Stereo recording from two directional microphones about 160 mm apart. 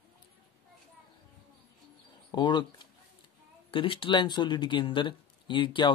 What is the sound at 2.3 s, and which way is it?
Speech, 30° left (ahead or behind).